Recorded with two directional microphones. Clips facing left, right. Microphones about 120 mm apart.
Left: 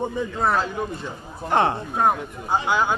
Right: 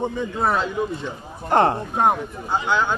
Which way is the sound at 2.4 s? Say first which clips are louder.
Even; 10° left (ahead or behind).